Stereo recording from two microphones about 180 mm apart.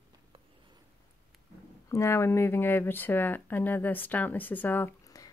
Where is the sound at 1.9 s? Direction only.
15° left (ahead or behind).